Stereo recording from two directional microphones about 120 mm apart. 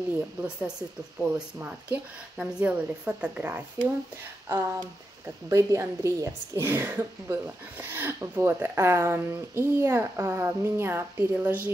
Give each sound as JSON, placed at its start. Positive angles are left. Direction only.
{"t": 0.4, "sound": "a woman's voice", "side_deg": -10}